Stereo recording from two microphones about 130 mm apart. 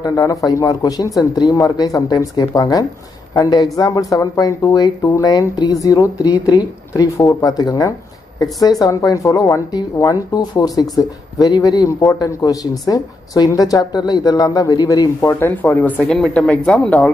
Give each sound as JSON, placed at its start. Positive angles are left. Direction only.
{"t": 0.0, "sound": "speech", "side_deg": 25}
{"t": 15.2, "sound": "speech", "side_deg": 15}